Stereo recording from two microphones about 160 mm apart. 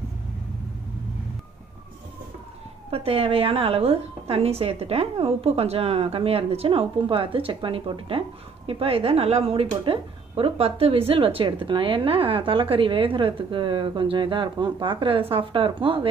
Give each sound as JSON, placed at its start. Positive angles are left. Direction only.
{"t": 2.9, "sound": "speech", "side_deg": -35}